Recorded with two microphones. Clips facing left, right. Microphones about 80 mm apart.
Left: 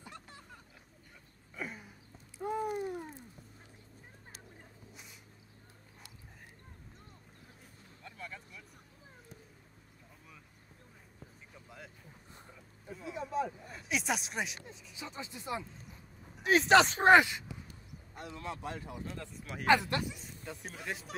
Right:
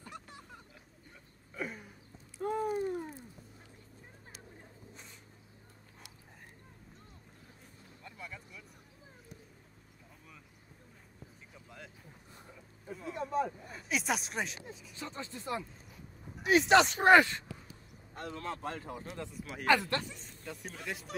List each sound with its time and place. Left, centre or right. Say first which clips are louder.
1.5 s a sound: right 2 dB; centre
8.0 s vehicle: left 1 dB; centre
11.5 s vehicle: even; centre
12.8 s a sound: right 2 dB; centre
15.0 s speech: right 1 dB; centre
16.4 s speech: even; left
17.0 s speech: even; centre
18.1 s speech: right 2 dB; right
19.6 s speech: left 1 dB; centre